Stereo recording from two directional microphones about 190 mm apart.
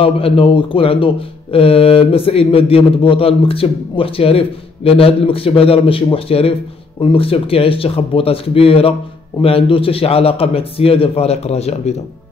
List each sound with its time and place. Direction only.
0.0 s a man's voice: 30° left (ahead or behind)